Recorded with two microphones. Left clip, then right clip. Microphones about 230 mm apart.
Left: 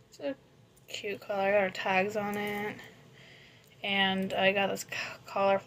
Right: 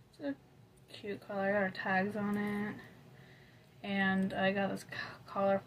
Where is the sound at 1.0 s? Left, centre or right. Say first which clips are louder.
Left 6 dB; centre.